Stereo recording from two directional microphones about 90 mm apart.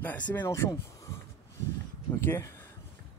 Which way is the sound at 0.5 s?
35° left (ahead or behind).